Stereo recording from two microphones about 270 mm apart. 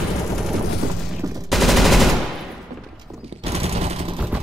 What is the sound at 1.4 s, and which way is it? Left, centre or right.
Machine gun, centre.